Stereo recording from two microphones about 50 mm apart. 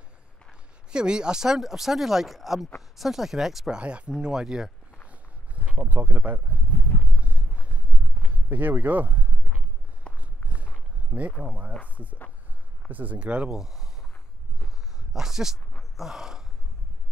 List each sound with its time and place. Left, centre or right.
0.5 s speech: centre
3.7 s speech: right
5.6 s speech: right
7.1 s a sound: right
8.3 s speech: right
10.1 s walk: left
10.4 s walk: left
11.1 s speech: right
12.9 s speech: right
13.5 s speech: centre
15.0 s speech: centre